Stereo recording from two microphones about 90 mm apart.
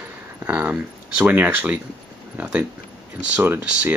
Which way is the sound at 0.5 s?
15° right (ahead or behind).